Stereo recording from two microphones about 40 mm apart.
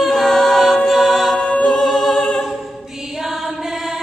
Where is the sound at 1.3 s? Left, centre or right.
Left.